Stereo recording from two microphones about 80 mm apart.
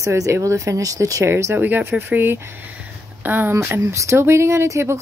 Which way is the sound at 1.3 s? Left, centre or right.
Right.